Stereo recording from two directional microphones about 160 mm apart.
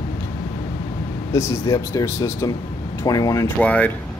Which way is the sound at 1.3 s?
15° left (ahead or behind).